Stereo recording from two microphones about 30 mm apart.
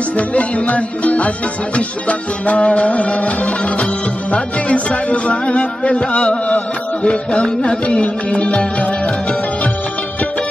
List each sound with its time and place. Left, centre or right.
0.3 s music: left
7.0 s music: left